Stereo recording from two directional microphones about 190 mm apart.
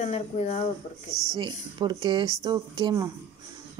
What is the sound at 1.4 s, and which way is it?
Speech, 25° right (ahead or behind).